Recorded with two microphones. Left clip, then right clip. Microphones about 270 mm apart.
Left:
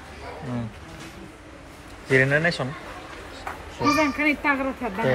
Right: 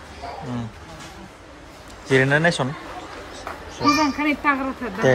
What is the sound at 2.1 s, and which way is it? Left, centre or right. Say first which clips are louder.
Speech: right 2 dB; centre.